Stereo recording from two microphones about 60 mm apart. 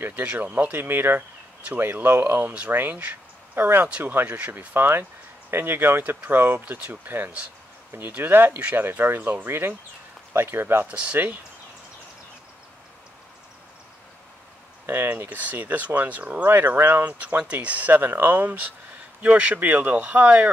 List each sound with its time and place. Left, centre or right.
0.2 s speech: right
10.9 s speech: right
15.2 s speech: right
16.4 s speech: right